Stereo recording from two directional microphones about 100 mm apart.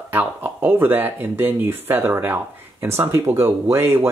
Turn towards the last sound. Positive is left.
turn(degrees=-25)  # may be behind; listen again after turning